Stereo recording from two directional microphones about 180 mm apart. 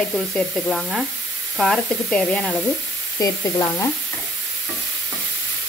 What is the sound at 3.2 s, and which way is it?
Frying, 20° left (ahead or behind).